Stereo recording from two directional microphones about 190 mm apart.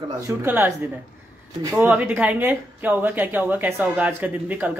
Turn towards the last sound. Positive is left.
turn(degrees=-10)  # may be behind; listen again after turning